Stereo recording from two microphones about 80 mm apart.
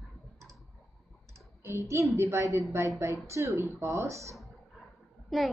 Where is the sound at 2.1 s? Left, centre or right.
Right.